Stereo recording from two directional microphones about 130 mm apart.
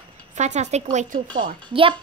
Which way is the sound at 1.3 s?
40° right (ahead or behind).